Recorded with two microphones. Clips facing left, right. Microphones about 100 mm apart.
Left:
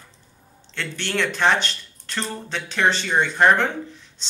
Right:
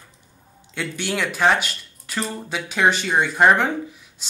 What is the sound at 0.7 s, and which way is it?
Speech, 10° right (ahead or behind).